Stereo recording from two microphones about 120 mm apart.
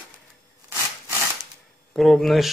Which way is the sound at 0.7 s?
25° right (ahead or behind).